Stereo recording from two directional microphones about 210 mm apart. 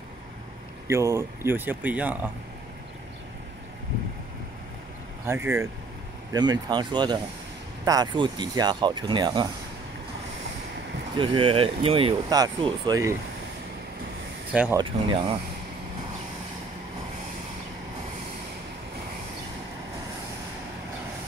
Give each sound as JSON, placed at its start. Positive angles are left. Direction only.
{"t": 0.8, "sound": "speech", "side_deg": -15}
{"t": 5.2, "sound": "speech", "side_deg": -10}
{"t": 11.1, "sound": "speech", "side_deg": -25}
{"t": 14.5, "sound": "speech", "side_deg": -5}
{"t": 14.8, "sound": "speech", "side_deg": -25}